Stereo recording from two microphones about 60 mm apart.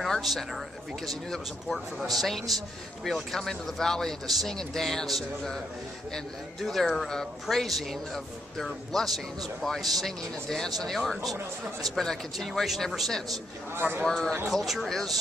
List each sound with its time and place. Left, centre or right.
0.0 s speech: centre
13.7 s speech: right
14.0 s speech: centre
14.5 s speech: centre